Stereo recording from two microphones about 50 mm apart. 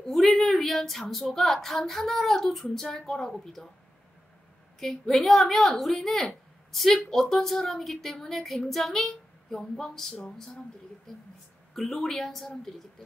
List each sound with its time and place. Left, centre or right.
0.0 s a woman's voice: centre
4.7 s a woman's voice: centre
11.7 s speech: centre